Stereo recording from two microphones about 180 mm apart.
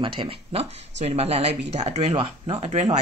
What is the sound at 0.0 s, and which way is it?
Speech, 30° right (ahead or behind).